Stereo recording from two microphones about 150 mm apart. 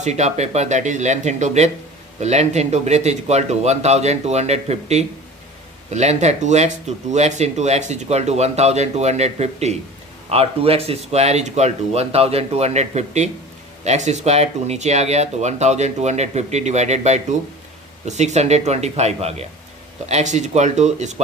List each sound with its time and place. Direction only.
0.0 s speech: 50° right (ahead or behind)